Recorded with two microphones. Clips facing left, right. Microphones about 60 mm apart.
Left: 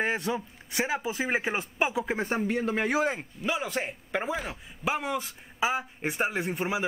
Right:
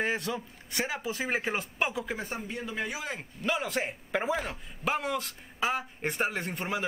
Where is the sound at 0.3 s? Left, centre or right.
Centre.